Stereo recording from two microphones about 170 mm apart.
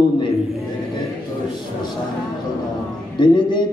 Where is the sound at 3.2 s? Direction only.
25° left (ahead or behind).